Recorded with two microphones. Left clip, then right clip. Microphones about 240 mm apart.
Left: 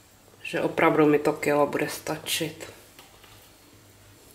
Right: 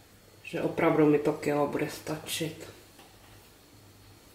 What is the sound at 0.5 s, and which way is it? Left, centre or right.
Speech, centre.